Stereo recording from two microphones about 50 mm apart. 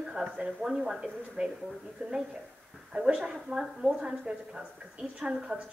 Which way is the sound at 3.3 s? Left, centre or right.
Centre.